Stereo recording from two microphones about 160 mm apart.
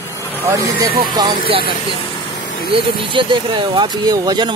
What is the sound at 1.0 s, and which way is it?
Speech, 25° right (ahead or behind).